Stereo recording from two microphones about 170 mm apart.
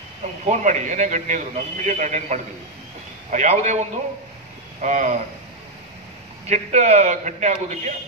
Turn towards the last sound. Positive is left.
turn(degrees=-40)  # may be behind; listen again after turning